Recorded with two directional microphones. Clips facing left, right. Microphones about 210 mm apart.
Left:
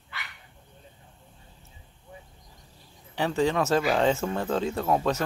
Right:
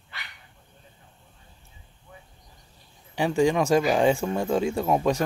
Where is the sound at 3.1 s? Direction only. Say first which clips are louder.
Right 3 dB; 15° right (ahead or behind).